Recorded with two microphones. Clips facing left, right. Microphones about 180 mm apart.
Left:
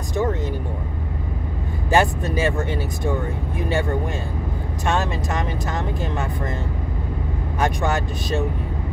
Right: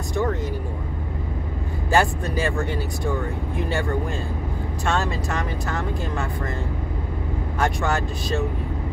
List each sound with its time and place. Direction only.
0.1 s a sound: 20° left (ahead or behind)
1.9 s speech: 20° left (ahead or behind)
4.8 s speech: 20° left (ahead or behind)
7.5 s speech: 15° left (ahead or behind)